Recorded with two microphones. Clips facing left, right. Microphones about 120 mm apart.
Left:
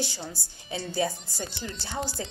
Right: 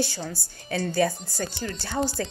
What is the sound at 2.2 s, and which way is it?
Speech, 15° left (ahead or behind).